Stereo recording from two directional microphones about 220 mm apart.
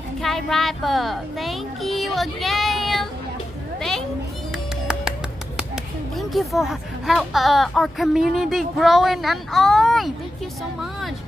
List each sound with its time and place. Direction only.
0.2 s speech: centre (ahead or behind)
6.1 s speech: centre (ahead or behind)